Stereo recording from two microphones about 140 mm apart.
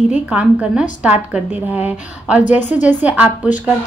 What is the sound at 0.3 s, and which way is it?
A woman's voice, 5° right (ahead or behind).